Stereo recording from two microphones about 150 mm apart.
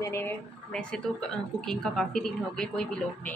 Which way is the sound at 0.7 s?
5° left (ahead or behind).